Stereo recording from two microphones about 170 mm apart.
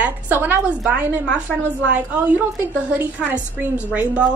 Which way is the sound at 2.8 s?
10° right (ahead or behind).